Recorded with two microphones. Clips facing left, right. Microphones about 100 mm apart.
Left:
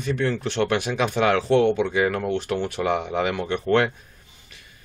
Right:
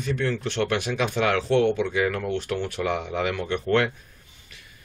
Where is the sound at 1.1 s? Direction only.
25° left (ahead or behind).